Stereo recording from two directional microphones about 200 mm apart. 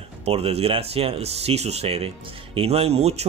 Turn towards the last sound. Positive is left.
turn(degrees=-30)  # may be behind; listen again after turning